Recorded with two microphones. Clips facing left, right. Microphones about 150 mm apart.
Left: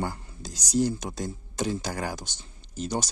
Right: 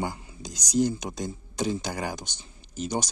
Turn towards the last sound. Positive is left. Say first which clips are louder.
# even
turn(degrees=0)  # may be behind; listen again after turning